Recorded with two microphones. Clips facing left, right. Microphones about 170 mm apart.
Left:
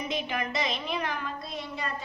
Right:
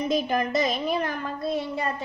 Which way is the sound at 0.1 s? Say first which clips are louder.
Right 8 dB; 40° right (ahead or behind).